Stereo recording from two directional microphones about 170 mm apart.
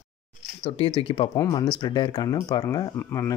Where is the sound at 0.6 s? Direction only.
35° left (ahead or behind).